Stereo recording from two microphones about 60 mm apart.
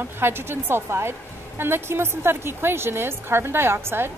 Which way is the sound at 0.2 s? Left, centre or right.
Right.